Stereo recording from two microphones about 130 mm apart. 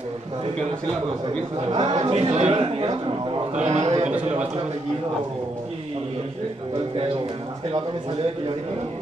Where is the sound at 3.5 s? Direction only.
60° right (ahead or behind).